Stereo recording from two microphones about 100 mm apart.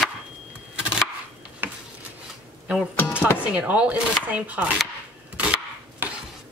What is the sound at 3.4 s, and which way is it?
Speech, 15° right (ahead or behind).